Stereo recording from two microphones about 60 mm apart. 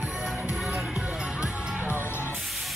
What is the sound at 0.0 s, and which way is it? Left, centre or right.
Music, centre.